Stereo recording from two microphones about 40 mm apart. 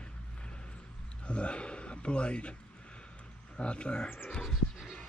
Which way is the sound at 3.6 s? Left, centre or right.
Left.